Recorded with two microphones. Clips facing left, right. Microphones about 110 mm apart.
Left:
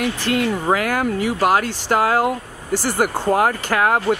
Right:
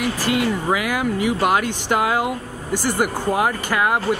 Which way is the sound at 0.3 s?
55° left (ahead or behind).